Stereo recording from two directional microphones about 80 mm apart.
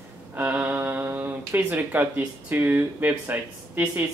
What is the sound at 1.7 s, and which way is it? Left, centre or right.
Speech, right.